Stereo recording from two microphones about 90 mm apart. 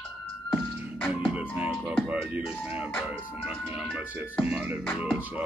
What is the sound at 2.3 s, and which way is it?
Speech, 20° right (ahead or behind).